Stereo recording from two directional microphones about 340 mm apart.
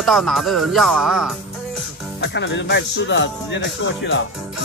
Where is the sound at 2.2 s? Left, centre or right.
Left.